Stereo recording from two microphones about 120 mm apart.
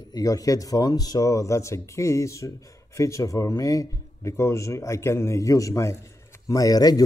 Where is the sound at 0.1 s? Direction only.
30° left (ahead or behind).